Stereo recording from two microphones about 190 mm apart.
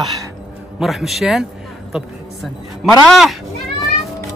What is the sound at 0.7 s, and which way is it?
Speech, centre (ahead or behind).